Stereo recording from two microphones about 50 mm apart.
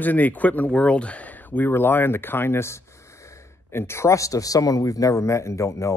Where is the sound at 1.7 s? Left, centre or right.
Left.